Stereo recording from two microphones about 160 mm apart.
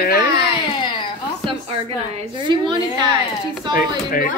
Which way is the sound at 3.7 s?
65° left (ahead or behind).